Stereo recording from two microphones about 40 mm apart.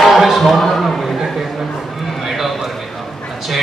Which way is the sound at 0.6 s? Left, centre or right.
Centre.